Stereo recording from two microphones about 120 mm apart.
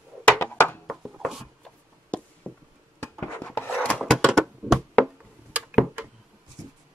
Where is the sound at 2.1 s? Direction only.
10° left (ahead or behind).